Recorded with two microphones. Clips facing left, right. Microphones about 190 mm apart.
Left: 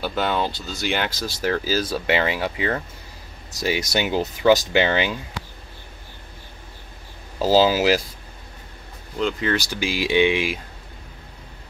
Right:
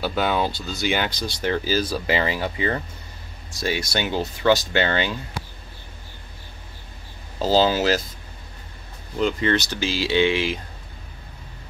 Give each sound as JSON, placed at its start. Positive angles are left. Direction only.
{"t": 0.0, "sound": "speech", "side_deg": -5}
{"t": 3.5, "sound": "speech", "side_deg": 15}
{"t": 7.3, "sound": "speech", "side_deg": 10}
{"t": 9.2, "sound": "speech", "side_deg": 0}